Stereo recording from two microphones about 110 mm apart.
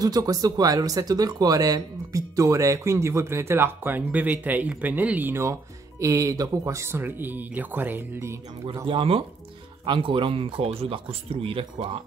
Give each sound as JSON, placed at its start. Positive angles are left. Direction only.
{"t": 0.0, "sound": "speech", "side_deg": -35}
{"t": 8.8, "sound": "speech", "side_deg": -55}